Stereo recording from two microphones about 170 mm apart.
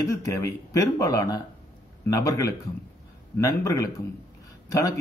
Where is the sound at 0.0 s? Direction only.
20° left (ahead or behind).